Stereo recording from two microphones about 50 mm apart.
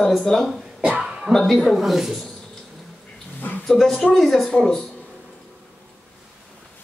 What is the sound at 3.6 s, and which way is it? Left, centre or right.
Speech, centre.